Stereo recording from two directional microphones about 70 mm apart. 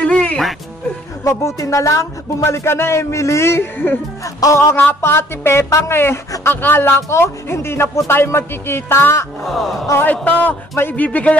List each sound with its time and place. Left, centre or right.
0.0 s music: centre
1.2 s speech: left
4.2 s speech: left
4.7 s speech: left
9.4 s music: centre
10.2 s a man's voice: left